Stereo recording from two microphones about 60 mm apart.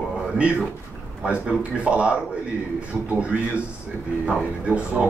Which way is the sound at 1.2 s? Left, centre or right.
Centre.